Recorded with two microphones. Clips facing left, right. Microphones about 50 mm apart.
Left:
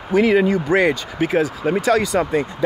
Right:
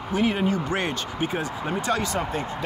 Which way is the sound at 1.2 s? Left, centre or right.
Left.